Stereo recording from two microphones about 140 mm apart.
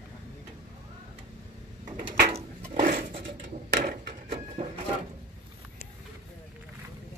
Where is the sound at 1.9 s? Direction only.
80° right.